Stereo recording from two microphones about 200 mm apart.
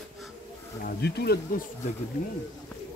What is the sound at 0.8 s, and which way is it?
Speech, 55° left (ahead or behind).